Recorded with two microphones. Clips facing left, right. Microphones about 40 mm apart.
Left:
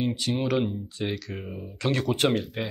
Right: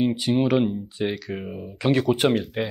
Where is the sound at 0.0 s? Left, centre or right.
Centre.